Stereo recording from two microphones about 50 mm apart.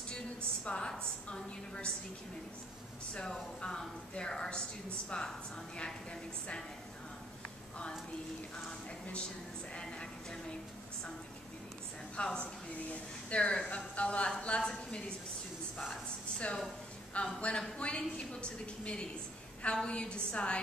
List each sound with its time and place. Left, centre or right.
0.7 s a woman's voice: centre
3.2 s a woman's voice: centre
9.8 s a woman's voice: centre
12.2 s a woman's voice: left
15.9 s a woman's voice: left